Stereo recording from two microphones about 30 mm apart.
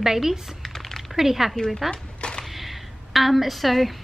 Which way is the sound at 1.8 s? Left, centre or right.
Left.